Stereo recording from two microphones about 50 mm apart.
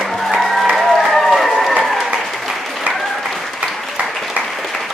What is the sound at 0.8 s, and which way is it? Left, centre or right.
Run, centre.